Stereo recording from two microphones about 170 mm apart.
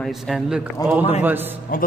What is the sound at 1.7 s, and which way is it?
Speech, 55° left (ahead or behind).